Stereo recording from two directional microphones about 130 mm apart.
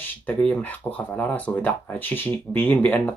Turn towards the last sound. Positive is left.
turn(degrees=15)  # may be behind; listen again after turning